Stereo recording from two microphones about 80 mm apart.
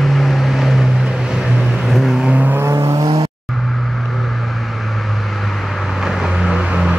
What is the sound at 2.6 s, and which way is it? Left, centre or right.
Vehicle, right.